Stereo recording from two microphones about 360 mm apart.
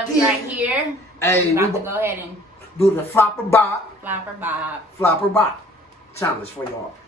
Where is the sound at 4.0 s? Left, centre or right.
Centre.